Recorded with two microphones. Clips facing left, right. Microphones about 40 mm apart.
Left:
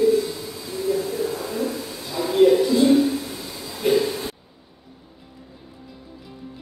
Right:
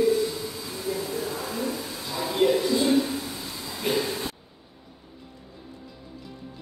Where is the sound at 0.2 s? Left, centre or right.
Centre.